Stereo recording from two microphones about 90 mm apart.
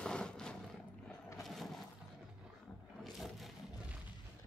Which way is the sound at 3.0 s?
Centre (ahead or behind).